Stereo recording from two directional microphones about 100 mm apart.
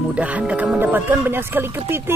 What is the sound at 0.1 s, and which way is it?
Speech, 15° right (ahead or behind).